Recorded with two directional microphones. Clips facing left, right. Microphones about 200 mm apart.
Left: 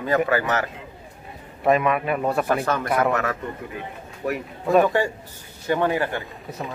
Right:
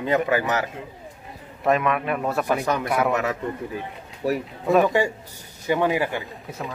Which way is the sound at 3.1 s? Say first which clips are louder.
Even; 20° right (ahead or behind).